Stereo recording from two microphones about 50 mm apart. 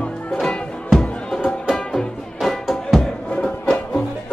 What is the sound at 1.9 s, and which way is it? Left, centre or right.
Music, centre.